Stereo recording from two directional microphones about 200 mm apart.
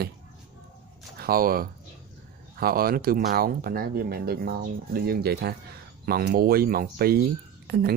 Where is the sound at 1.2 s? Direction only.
45° right (ahead or behind).